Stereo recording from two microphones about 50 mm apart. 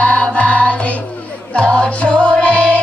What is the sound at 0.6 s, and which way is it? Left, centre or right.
Music, left.